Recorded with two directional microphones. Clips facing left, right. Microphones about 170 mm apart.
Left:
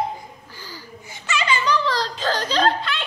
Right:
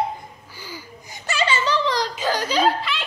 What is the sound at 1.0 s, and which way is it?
Giggle, 40° right (ahead or behind).